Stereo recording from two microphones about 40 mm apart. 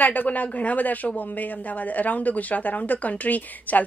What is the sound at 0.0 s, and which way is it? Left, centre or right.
Speech, left.